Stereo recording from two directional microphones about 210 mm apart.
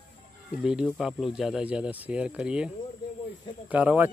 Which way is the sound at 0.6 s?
5° right (ahead or behind).